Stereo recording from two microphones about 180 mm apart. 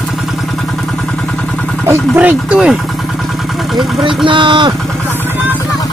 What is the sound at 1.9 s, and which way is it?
Speech, 10° right (ahead or behind).